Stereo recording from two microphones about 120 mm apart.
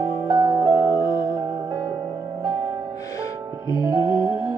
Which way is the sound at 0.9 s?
45° left (ahead or behind).